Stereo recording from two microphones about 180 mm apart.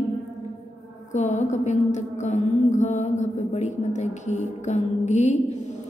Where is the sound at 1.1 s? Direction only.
40° left (ahead or behind).